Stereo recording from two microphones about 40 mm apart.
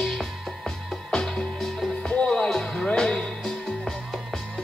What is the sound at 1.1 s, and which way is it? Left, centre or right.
Music, centre.